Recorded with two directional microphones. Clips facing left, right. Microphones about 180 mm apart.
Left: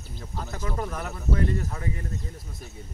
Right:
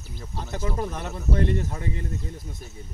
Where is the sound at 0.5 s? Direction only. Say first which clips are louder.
Right 3 dB; 20° right (ahead or behind).